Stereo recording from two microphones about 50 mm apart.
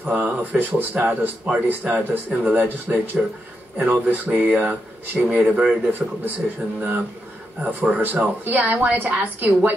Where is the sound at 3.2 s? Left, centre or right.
Centre.